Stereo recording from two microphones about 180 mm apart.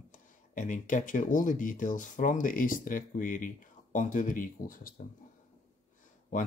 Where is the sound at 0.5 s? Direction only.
45° left (ahead or behind).